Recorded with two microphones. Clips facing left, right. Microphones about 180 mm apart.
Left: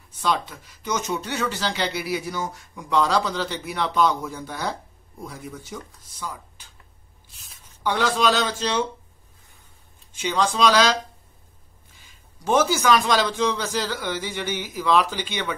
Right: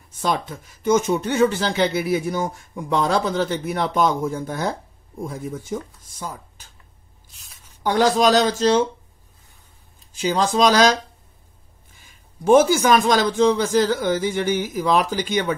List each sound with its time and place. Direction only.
0.2 s speech: 45° right (ahead or behind)
7.8 s speech: 45° right (ahead or behind)
10.1 s speech: 40° right (ahead or behind)